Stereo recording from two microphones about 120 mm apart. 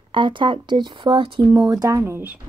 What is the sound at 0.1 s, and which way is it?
Speech, 40° right (ahead or behind).